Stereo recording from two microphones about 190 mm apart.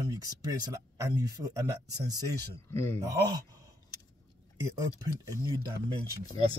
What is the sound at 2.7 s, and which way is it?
Speech, 10° left (ahead or behind).